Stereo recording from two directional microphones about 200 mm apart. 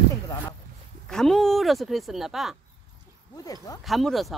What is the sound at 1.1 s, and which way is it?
Speech, centre (ahead or behind).